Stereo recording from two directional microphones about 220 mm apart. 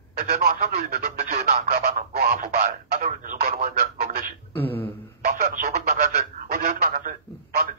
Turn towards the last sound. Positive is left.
turn(degrees=-40)  # may be behind; listen again after turning